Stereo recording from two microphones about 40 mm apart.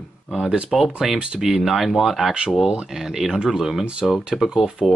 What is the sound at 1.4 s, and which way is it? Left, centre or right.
Speech, centre.